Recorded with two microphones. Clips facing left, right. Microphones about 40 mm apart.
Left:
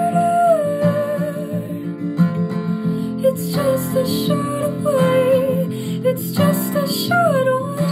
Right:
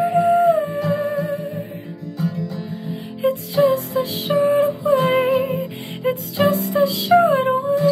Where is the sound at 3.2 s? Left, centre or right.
Right.